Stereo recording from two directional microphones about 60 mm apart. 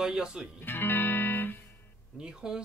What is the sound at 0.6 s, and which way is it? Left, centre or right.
Music, left.